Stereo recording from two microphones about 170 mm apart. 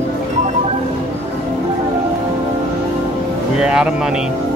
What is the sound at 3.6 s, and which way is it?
Speech, 5° right (ahead or behind).